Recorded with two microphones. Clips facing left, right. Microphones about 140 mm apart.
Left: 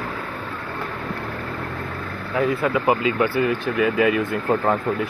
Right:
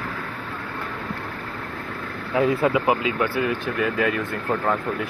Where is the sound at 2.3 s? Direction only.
20° right (ahead or behind).